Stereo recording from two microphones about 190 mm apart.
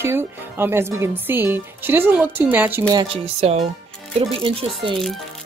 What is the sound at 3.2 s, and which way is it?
Speech, 35° right (ahead or behind).